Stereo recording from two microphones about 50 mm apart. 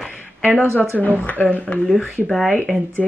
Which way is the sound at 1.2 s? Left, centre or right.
Left.